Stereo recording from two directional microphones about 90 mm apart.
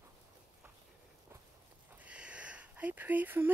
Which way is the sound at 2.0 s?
15° right (ahead or behind).